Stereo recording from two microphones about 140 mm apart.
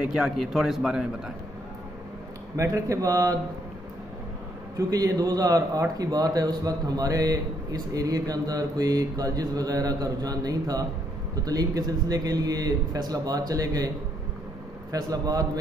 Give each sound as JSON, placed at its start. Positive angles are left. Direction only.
{"t": 0.1, "sound": "speech", "side_deg": -5}
{"t": 2.5, "sound": "a man's voice", "side_deg": -20}
{"t": 4.7, "sound": "a man's voice", "side_deg": -25}